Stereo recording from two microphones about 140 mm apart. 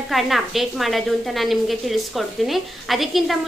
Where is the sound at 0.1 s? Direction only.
Centre (ahead or behind).